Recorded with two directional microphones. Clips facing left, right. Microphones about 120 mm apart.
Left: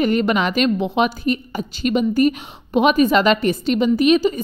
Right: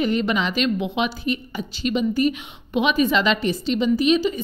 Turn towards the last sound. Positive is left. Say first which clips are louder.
# left 3 dB
turn(degrees=55)  # may be behind; listen again after turning